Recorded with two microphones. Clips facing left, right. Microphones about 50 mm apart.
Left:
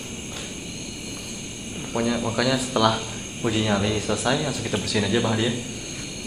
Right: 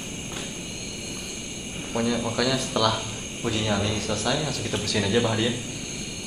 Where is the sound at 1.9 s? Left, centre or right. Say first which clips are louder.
Left 1 dB; centre.